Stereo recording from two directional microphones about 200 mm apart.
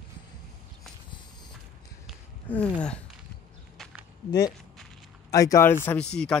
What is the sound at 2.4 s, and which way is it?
Speech, 5° left (ahead or behind).